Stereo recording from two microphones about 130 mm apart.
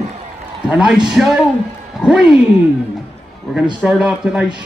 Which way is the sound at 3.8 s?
5° right (ahead or behind).